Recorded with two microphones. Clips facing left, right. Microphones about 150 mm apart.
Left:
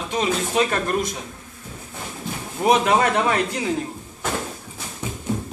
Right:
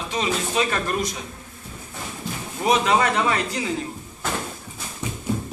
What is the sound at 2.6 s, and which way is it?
A man's voice, 50° left (ahead or behind).